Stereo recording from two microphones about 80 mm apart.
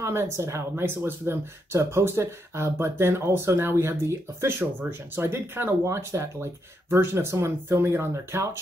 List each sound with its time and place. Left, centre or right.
0.0 s speech: right
5.9 s speech: right